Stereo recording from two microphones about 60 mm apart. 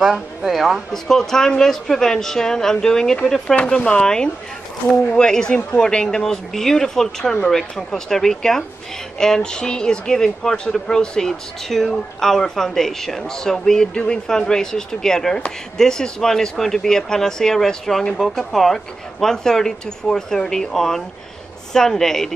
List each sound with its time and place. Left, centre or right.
0.0 s speech: centre
0.9 s speech: centre